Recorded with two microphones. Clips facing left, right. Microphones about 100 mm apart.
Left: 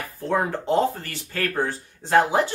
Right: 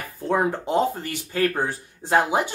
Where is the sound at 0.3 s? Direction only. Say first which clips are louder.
Right 1 dB; 15° right (ahead or behind).